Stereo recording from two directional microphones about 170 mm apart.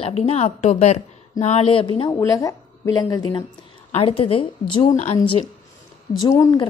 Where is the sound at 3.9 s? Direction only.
35° left (ahead or behind).